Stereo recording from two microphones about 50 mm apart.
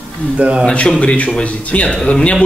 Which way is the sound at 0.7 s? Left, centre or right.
Left.